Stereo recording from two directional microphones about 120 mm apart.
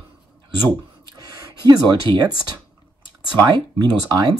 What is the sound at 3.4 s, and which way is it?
Speech, 40° right (ahead or behind).